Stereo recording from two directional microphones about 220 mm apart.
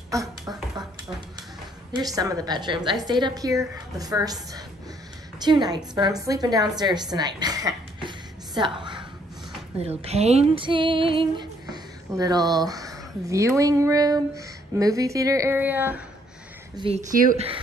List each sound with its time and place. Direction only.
2.0 s a woman's voice: 15° right (ahead or behind)
8.5 s a sound: 20° right (ahead or behind)
9.8 s speech: 30° right (ahead or behind); by 16.0 s 10° right (ahead or behind)
16.7 s a woman's voice: 25° right (ahead or behind)